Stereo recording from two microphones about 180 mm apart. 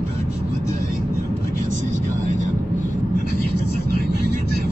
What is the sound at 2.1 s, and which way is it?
Vehicle, 40° right (ahead or behind).